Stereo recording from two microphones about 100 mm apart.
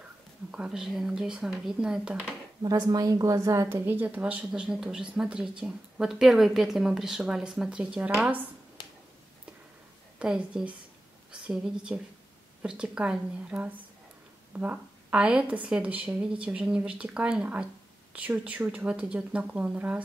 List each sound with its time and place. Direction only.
0.5 s a woman's voice: 5° right (ahead or behind)
2.6 s a woman's voice: 40° right (ahead or behind); by 8.4 s 10° right (ahead or behind)
10.1 s a woman's voice: 10° right (ahead or behind)